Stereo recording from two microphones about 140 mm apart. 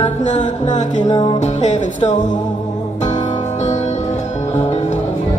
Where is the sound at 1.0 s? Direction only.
30° left (ahead or behind).